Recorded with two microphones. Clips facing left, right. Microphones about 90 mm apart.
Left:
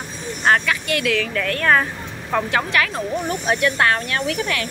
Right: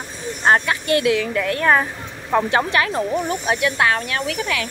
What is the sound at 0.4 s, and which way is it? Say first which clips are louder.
A woman's voice: right 1 dB; 25° right (ahead or behind).